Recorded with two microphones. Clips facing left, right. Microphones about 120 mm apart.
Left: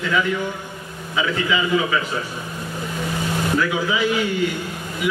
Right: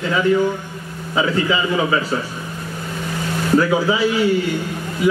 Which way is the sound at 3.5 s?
35° right (ahead or behind).